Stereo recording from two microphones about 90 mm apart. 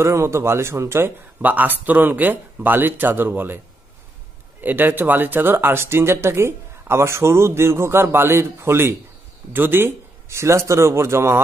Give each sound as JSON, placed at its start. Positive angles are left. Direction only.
{"t": 0.0, "sound": "speech", "side_deg": -30}
{"t": 4.6, "sound": "speech", "side_deg": -20}